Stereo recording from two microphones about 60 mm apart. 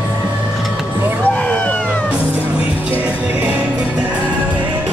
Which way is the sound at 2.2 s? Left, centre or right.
Right.